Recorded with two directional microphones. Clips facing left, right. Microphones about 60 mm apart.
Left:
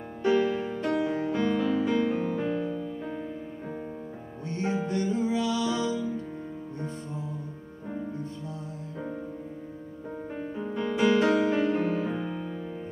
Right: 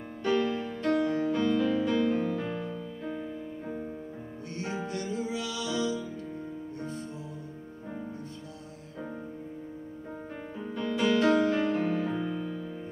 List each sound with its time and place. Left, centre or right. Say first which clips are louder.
0.2 s music: left 3 dB; centre
4.5 s music: left 6 dB; left
10.7 s music: left 3 dB; centre